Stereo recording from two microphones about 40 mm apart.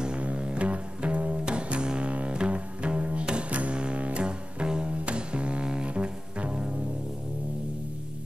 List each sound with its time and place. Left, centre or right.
0.4 s double bass: right